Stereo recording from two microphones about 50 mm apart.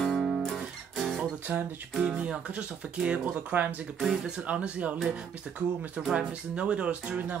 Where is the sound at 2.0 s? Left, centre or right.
Right.